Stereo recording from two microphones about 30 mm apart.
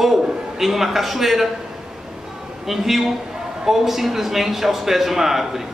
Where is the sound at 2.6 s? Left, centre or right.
Centre.